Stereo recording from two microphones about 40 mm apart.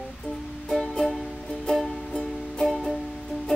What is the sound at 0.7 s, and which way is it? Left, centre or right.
Music, centre.